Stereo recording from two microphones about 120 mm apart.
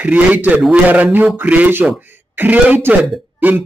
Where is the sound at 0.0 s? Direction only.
15° right (ahead or behind).